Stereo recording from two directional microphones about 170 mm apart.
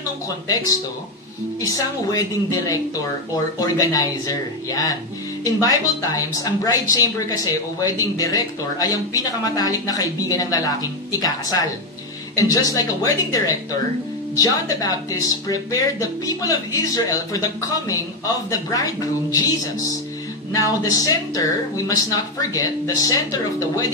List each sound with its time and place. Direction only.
1.6 s speech: 20° left (ahead or behind)
12.4 s speech: 20° left (ahead or behind)
20.5 s speech: 20° left (ahead or behind)